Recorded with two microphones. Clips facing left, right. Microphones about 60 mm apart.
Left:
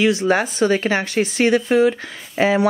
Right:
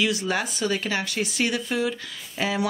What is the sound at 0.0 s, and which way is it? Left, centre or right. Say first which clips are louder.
Speech: left 8 dB; left.